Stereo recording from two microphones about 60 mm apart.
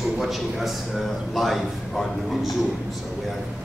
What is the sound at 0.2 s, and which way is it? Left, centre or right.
A man's voice, centre.